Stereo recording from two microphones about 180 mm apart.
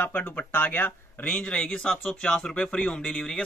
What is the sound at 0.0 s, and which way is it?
Speech, 10° left (ahead or behind).